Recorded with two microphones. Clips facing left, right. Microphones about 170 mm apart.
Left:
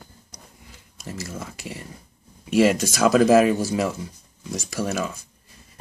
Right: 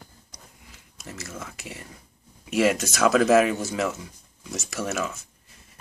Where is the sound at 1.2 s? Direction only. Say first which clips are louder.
Left 2 dB; 15° left (ahead or behind).